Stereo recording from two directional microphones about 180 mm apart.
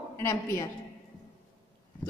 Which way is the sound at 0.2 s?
15° left (ahead or behind).